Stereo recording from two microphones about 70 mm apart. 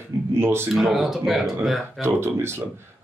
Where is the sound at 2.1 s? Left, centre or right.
Right.